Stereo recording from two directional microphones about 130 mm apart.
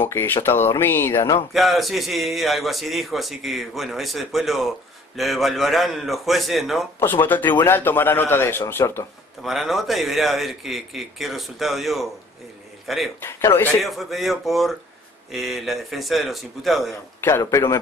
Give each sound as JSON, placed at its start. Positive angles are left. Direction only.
{"t": 0.0, "sound": "speech", "side_deg": 15}
{"t": 1.5, "sound": "a man's voice", "side_deg": 0}
{"t": 7.0, "sound": "speech", "side_deg": 15}
{"t": 9.4, "sound": "a man's voice", "side_deg": 0}
{"t": 13.2, "sound": "a man's voice", "side_deg": 20}
{"t": 13.8, "sound": "a man's voice", "side_deg": 0}
{"t": 17.2, "sound": "a man's voice", "side_deg": 20}